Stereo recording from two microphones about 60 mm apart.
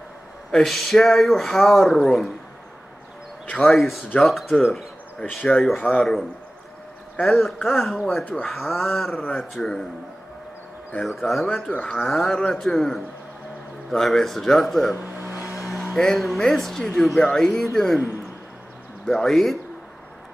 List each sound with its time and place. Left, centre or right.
0.5 s speech: centre
3.7 s speech: centre
5.8 s speech: centre
7.2 s speech: centre
11.1 s speech: centre
15.1 s a sound: right
15.7 s speech: centre
19.0 s speech: centre